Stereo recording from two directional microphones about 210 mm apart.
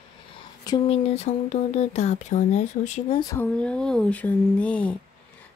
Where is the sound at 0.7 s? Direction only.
30° left (ahead or behind).